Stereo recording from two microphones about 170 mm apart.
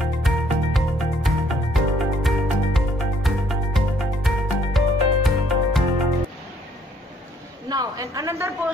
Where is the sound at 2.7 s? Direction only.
Centre (ahead or behind).